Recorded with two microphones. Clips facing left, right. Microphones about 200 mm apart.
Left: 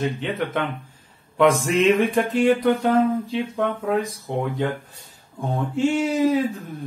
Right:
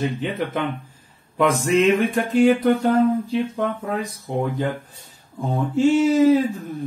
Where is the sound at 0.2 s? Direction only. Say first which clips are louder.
Right 1 dB; centre (ahead or behind).